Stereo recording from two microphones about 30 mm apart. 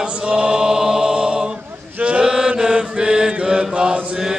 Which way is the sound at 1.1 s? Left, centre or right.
Right.